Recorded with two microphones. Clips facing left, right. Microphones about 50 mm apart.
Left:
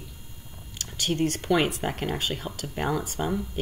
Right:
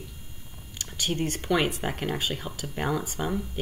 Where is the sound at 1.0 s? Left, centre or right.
Centre.